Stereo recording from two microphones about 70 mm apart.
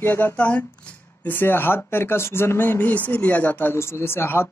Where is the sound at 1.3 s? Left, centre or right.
Left.